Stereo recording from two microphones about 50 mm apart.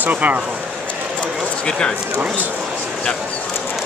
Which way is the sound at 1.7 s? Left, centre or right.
Centre.